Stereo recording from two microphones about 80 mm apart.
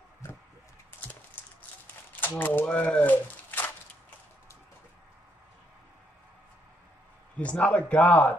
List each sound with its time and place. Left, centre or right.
2.1 s speech: left
2.6 s speech: centre
7.3 s speech: centre